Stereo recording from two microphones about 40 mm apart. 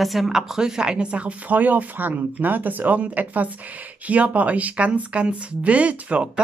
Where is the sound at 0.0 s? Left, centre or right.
Centre; by 1.3 s right.